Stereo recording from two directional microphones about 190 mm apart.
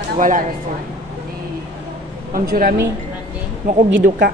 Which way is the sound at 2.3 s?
45° right (ahead or behind).